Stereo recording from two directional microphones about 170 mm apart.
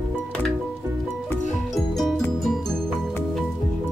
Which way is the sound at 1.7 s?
Centre (ahead or behind).